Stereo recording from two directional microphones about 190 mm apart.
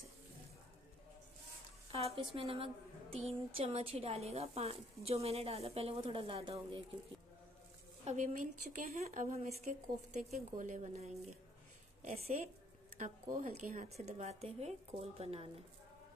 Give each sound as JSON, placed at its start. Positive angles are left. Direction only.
{"t": 1.9, "sound": "a woman's voice", "side_deg": -30}
{"t": 8.0, "sound": "a woman's voice", "side_deg": -40}